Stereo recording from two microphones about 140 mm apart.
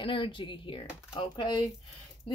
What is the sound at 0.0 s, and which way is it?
A woman's voice, 40° left (ahead or behind).